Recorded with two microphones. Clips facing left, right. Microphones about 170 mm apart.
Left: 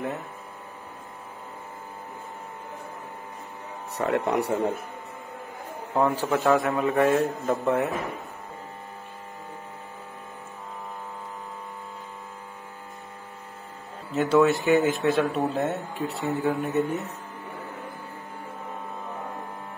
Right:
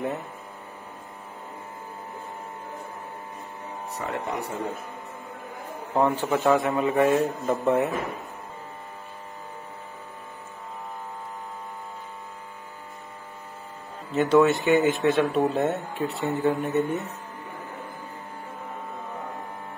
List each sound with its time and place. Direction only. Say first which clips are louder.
3.9 s speech: left 7 dB; 65° left (ahead or behind)
5.9 s speech: even; centre (ahead or behind)
14.1 s speech: right 1 dB; centre (ahead or behind)